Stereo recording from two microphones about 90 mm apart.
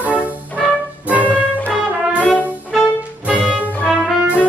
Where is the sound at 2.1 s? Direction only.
15° left (ahead or behind).